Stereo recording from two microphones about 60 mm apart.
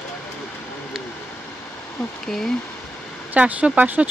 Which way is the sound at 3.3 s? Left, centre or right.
Right.